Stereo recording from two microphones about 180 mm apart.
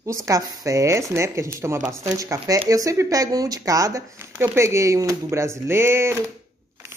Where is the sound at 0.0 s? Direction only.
15° right (ahead or behind).